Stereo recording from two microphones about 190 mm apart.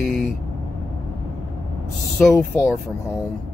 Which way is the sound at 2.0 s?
Centre (ahead or behind).